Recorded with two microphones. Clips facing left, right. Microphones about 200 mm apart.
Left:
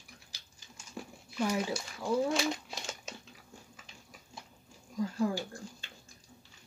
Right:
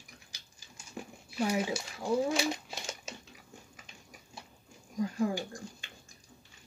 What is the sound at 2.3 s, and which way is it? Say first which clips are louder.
Crumpling: even; centre (ahead or behind).